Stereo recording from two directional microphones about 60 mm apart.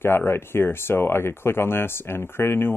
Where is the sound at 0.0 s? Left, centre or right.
Left.